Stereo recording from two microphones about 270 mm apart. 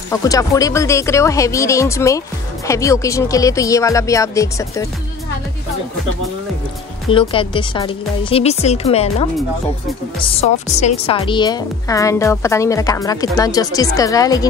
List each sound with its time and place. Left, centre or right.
0.1 s speech: centre
7.1 s speech: centre